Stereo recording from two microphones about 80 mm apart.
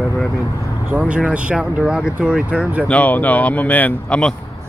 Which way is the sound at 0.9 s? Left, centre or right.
Centre.